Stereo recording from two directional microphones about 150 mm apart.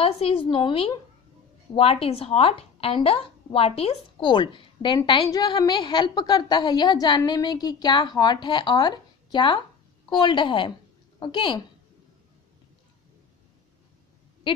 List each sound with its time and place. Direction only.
0.0 s a woman's voice: 40° left (ahead or behind)